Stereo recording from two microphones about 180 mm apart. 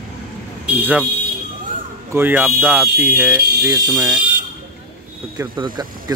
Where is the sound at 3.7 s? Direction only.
20° right (ahead or behind).